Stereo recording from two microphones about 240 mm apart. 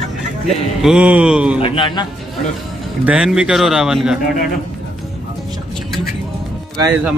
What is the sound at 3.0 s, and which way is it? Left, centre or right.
Speech, centre.